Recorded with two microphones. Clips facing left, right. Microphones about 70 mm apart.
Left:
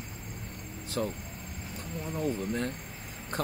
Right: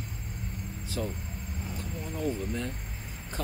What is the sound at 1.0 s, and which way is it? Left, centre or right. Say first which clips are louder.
Speech: left 2 dB; left.